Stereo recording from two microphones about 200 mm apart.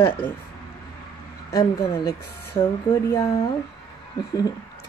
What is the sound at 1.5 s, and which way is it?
A woman's voice, 20° left (ahead or behind).